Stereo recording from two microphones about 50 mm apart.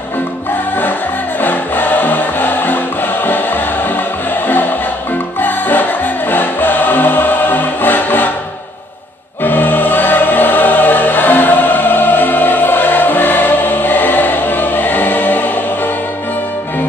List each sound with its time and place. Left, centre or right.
1.4 s music: left
5.4 s music: left
9.4 s choir: left